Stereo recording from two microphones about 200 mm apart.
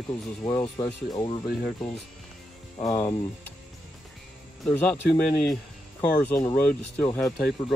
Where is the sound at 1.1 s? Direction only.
25° left (ahead or behind).